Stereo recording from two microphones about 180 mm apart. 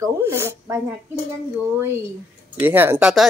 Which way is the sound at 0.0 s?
15° right (ahead or behind).